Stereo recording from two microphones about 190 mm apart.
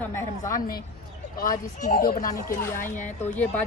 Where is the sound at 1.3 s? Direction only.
45° left (ahead or behind).